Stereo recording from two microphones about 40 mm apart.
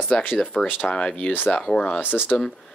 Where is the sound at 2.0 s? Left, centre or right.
Left.